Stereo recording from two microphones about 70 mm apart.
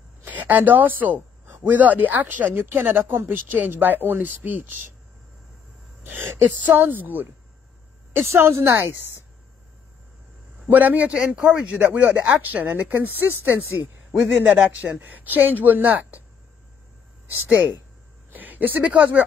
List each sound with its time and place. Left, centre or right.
0.2 s a sound: right
1.6 s speech: right
6.7 s speech: right
8.3 s speech: right
10.7 s speech: right
18.3 s speech: right